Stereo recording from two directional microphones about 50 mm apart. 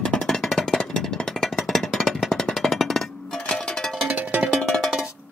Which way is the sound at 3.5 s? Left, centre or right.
Centre.